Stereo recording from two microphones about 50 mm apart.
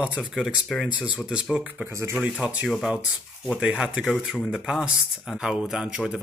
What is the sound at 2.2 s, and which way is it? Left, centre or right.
Speech, centre.